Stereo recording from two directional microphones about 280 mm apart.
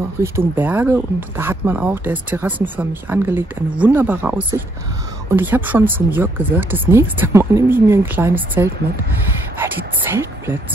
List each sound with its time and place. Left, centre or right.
0.2 s speech: centre